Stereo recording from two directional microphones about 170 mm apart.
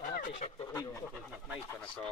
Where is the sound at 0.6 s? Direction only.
20° left (ahead or behind).